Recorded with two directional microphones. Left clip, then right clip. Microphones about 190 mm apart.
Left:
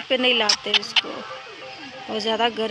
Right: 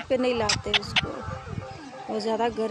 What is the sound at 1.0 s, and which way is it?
Speech, 50° right (ahead or behind).